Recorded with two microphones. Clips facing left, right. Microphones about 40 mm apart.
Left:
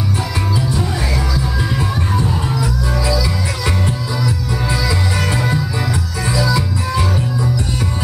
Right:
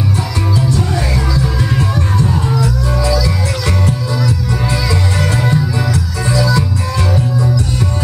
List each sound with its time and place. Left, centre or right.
0.7 s music: centre
5.5 s music: centre